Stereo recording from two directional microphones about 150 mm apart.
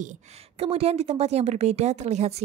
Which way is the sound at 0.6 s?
40° right (ahead or behind).